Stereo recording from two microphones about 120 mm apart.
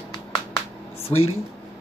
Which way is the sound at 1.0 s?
60° left (ahead or behind).